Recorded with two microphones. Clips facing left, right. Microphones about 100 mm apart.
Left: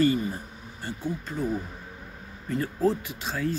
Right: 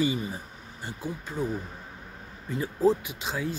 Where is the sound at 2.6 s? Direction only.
15° right (ahead or behind).